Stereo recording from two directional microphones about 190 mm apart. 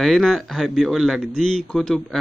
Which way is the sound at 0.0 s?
Centre (ahead or behind).